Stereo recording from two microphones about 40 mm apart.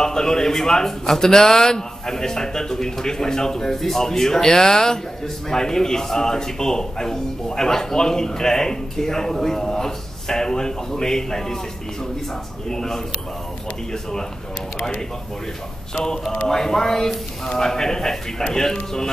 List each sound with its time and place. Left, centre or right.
0.0 s a man's voice: centre
12.6 s a man's voice: centre
15.9 s a man's voice: centre